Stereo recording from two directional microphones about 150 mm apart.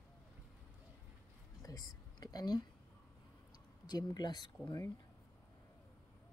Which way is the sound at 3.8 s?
30° left (ahead or behind).